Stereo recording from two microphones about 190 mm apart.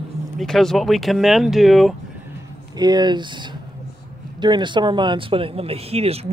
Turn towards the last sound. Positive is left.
turn(degrees=-30)  # may be behind; listen again after turning